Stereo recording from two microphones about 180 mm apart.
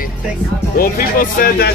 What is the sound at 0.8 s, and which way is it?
Speech, 55° left (ahead or behind).